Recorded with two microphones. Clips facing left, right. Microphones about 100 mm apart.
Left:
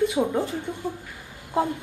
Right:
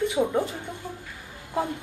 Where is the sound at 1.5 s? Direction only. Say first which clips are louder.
Left 4 dB; 20° left (ahead or behind).